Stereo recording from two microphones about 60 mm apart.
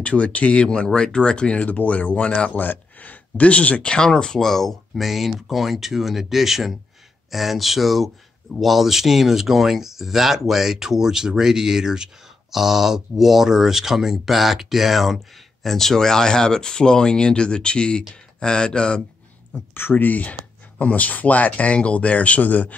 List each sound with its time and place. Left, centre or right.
0.0 s speech: left
2.6 s speech: left
19.7 s speech: left